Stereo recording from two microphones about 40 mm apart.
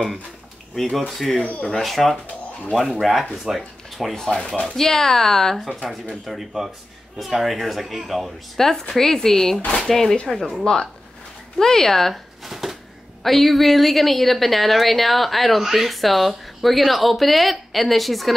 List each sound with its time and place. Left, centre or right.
0.7 s speech: centre
4.1 s speech: centre
5.6 s speech: centre
10.6 s speech: left
12.4 s a sound: centre
13.2 s speech: centre